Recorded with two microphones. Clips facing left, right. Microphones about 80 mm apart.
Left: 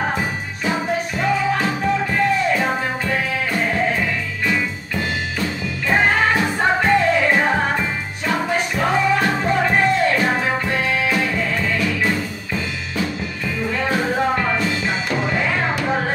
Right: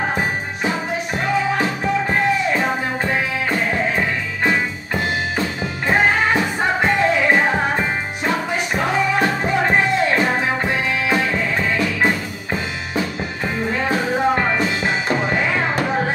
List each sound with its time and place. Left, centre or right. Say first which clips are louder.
0.7 s music: left 2 dB; right
4.0 s music: right 2 dB; right
11.1 s music: right 1 dB; right
13.8 s music: right 1 dB; right